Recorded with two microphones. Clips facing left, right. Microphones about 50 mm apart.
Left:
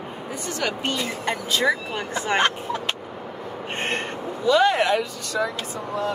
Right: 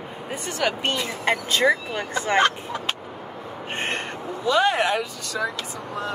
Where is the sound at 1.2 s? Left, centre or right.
Right.